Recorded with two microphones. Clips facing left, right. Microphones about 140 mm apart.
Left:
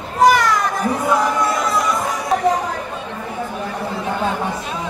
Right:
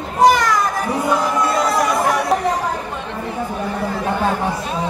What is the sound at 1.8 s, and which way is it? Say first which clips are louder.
Chatter: right 4 dB; 70° right (ahead or behind).